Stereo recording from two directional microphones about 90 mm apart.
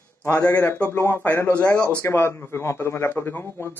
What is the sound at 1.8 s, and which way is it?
Speech, 15° left (ahead or behind).